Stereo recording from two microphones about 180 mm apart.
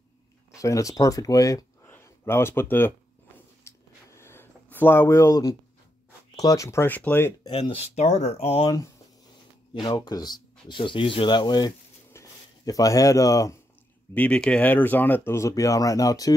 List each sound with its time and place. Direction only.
0.6 s speech: 20° left (ahead or behind)
3.6 s a sound: 15° left (ahead or behind)
6.3 s speech: 20° left (ahead or behind)
7.4 s speech: 30° left (ahead or behind)
8.5 s speech: 25° left (ahead or behind)
14.1 s speech: 5° left (ahead or behind)